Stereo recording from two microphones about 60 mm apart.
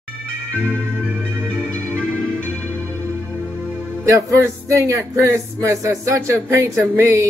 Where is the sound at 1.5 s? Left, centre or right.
Centre.